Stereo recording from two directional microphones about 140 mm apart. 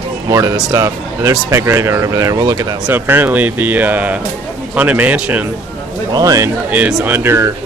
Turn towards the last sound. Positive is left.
turn(degrees=-20)  # may be behind; listen again after turning